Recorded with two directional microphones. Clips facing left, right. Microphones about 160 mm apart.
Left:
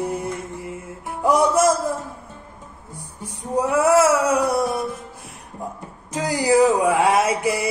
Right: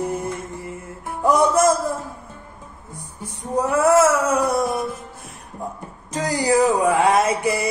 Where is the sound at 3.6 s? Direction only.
10° left (ahead or behind).